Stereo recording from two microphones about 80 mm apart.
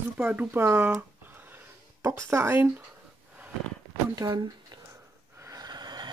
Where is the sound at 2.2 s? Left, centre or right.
Right.